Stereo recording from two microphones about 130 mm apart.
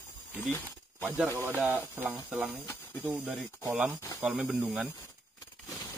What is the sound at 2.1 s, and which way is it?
Speech, centre (ahead or behind).